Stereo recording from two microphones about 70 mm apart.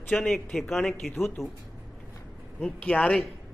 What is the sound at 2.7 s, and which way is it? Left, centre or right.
Speech, centre.